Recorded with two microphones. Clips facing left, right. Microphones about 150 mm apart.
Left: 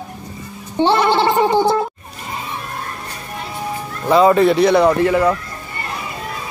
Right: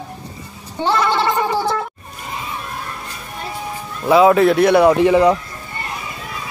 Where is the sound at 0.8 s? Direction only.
25° left (ahead or behind).